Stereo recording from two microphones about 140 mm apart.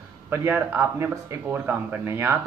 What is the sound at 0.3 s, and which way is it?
Speech, 20° right (ahead or behind).